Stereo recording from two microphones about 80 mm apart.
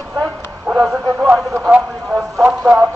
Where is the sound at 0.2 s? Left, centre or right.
Centre.